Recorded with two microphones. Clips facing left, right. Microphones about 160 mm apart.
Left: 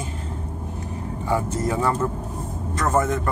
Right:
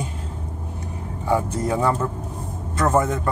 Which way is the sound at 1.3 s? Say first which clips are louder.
Right 2 dB; 15° right (ahead or behind).